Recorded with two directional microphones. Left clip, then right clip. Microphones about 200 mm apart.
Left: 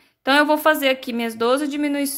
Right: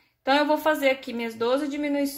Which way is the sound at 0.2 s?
35° left (ahead or behind).